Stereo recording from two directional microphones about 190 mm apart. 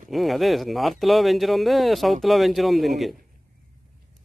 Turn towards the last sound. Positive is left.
turn(degrees=0)  # may be behind; listen again after turning